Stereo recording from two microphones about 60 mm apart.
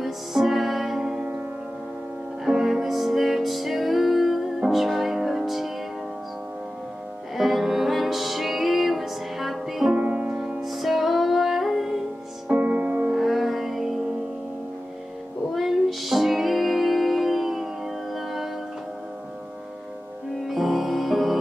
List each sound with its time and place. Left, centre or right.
0.0 s music: centre
2.4 s music: centre
7.3 s music: centre
9.9 s music: right
10.6 s music: centre
12.4 s music: right
13.1 s music: centre
15.5 s music: centre
20.4 s music: centre